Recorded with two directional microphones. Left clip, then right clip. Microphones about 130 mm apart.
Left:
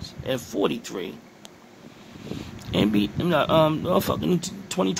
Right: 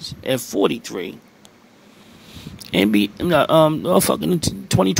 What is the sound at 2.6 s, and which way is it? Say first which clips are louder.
Speech: right 6 dB; 45° right (ahead or behind).